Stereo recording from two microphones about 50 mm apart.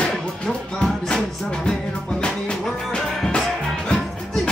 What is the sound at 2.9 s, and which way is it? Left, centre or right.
Music, centre.